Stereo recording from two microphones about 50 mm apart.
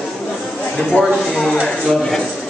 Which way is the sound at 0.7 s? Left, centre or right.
Centre.